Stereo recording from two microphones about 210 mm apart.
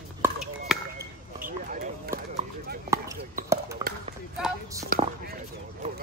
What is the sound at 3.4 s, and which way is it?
Basketball bounce, 15° right (ahead or behind).